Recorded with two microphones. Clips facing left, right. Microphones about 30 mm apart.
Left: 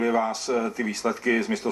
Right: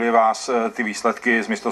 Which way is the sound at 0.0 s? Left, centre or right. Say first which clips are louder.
Right 7 dB; right.